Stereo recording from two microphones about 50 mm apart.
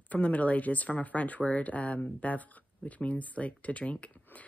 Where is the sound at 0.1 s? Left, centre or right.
Left.